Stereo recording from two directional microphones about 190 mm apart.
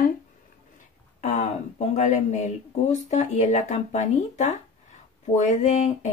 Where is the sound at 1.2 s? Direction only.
35° left (ahead or behind).